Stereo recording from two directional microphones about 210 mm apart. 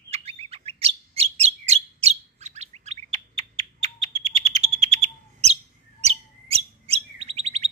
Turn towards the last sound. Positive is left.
turn(degrees=-30)  # may be behind; listen again after turning